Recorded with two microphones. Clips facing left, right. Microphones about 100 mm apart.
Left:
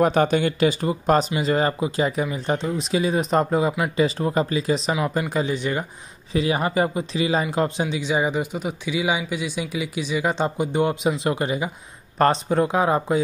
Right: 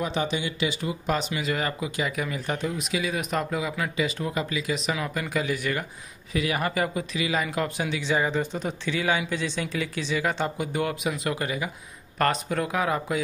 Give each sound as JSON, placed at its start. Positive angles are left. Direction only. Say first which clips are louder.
{"t": 0.0, "sound": "speech", "louder": "left 9 dB", "side_deg": 50}